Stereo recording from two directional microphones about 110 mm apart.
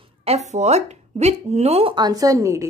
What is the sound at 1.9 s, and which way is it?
Speech, 35° right (ahead or behind).